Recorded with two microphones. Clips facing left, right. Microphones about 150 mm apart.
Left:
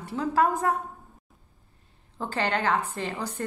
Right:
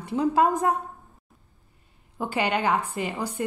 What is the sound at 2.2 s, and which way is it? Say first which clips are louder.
A woman's voice: right 2 dB; 10° right (ahead or behind).